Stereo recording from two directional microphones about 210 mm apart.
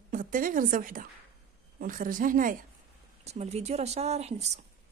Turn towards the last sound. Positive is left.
turn(degrees=-30)  # may be behind; listen again after turning